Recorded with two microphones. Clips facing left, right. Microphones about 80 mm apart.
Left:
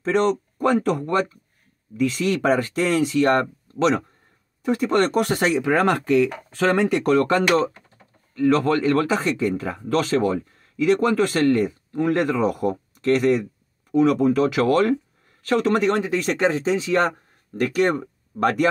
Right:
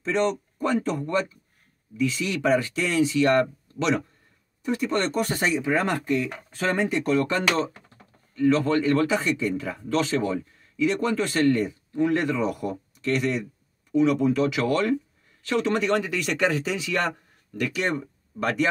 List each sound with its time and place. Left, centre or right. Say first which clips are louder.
0.0 s speech: left 4 dB; left
4.6 s speech: left 5 dB; left
17.6 s speech: left 6 dB; left